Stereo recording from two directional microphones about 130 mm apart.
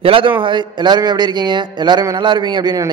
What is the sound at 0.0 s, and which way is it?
A man's voice, 40° right (ahead or behind).